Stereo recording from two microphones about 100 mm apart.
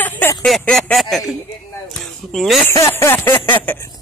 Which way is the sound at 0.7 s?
5° left (ahead or behind).